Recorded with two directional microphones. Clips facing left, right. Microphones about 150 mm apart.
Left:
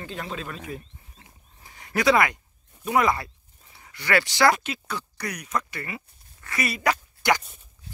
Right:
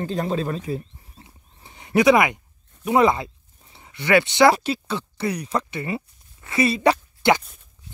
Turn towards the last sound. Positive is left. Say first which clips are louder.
# right 5 dB
turn(degrees=-25)  # may be behind; listen again after turning